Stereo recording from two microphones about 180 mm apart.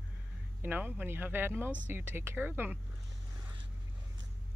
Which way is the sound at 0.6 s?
10° right (ahead or behind).